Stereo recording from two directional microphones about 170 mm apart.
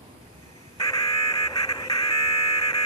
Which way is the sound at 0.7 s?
20° left (ahead or behind).